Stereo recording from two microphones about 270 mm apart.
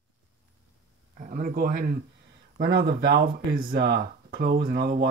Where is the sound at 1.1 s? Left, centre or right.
Right.